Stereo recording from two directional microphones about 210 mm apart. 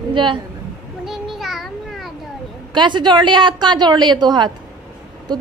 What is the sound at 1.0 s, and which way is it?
Child singing, centre (ahead or behind).